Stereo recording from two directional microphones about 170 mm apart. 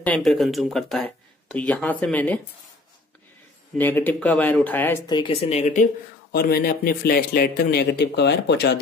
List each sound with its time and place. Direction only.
0.0 s speech: 5° left (ahead or behind)
3.7 s speech: 10° left (ahead or behind)
5.0 s speech: 25° left (ahead or behind)
6.3 s a man's voice: 65° left (ahead or behind); by 8.7 s 85° left